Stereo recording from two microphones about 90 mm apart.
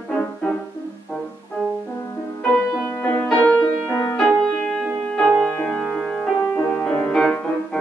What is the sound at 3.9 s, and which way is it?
Music, 35° left (ahead or behind).